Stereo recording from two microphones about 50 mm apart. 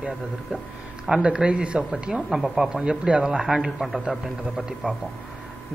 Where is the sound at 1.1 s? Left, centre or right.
Centre.